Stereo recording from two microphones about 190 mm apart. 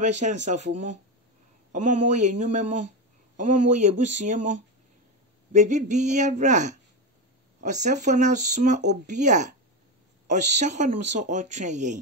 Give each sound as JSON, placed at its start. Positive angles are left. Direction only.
{"t": 0.0, "sound": "speech", "side_deg": -40}
{"t": 1.7, "sound": "speech", "side_deg": -40}
{"t": 7.8, "sound": "speech", "side_deg": -40}